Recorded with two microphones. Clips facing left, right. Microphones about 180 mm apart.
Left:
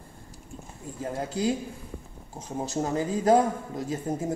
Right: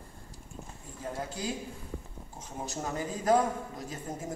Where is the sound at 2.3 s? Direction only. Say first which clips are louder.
Left 8 dB; 30° left (ahead or behind).